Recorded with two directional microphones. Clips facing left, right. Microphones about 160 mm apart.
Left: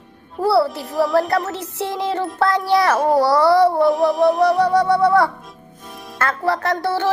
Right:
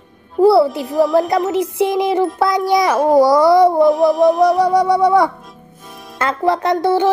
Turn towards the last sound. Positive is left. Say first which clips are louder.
# right 6 dB
turn(degrees=-15)  # may be behind; listen again after turning